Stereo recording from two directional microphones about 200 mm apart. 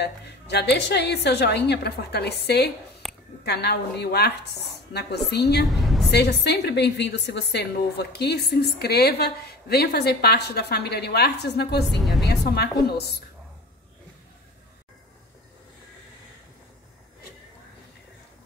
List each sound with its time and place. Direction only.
0.0 s a woman's voice: 55° left (ahead or behind)
3.0 s a sound: centre (ahead or behind)
3.4 s a woman's voice: 55° left (ahead or behind)
5.7 s a sound: centre (ahead or behind)
6.0 s a woman's voice: 55° left (ahead or behind)
11.8 s a woman's voice: centre (ahead or behind)
12.4 s a woman's voice: 55° left (ahead or behind)